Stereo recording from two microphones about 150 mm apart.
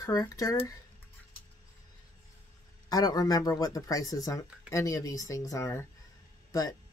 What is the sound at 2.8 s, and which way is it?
Speech, 25° left (ahead or behind).